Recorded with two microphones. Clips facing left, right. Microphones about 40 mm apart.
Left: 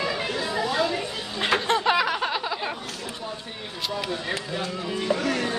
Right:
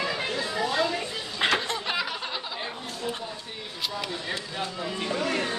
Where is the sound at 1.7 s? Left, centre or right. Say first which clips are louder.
Left 8 dB; left.